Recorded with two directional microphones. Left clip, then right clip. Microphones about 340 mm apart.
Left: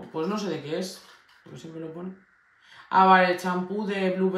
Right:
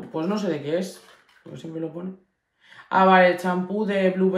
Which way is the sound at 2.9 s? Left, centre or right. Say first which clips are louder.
Right 2 dB; centre.